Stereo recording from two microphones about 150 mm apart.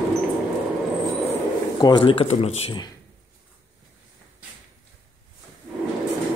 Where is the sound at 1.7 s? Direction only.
30° left (ahead or behind).